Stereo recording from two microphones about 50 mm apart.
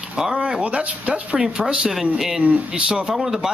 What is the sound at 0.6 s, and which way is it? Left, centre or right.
Speech, right.